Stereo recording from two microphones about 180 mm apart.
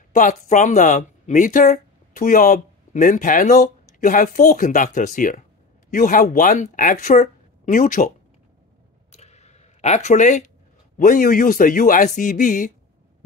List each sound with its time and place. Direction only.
0.1 s speech: 45° left (ahead or behind)
9.1 s a sound: 35° left (ahead or behind)
11.0 s a man's voice: 50° left (ahead or behind)